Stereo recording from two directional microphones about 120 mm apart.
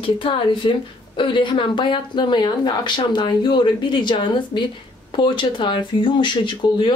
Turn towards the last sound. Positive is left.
turn(degrees=40)  # may be behind; listen again after turning